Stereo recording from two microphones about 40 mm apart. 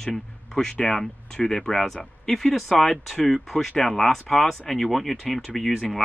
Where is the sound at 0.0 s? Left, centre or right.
Centre.